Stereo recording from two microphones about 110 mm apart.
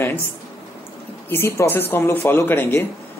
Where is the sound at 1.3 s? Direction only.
20° left (ahead or behind).